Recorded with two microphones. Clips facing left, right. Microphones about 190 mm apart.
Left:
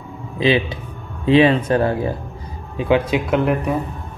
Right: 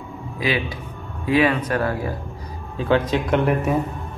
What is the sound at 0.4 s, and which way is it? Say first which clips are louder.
Speech: left 6 dB; 25° left (ahead or behind).